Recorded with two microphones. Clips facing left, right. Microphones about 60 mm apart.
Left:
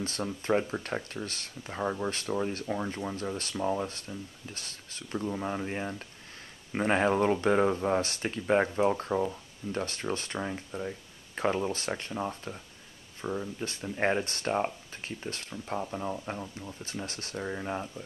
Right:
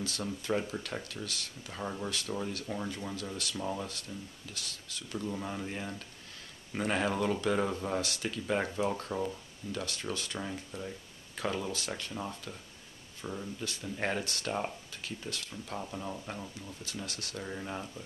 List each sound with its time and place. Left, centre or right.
0.0 s speech: left
3.2 s speech: left
9.7 s speech: left
15.8 s speech: left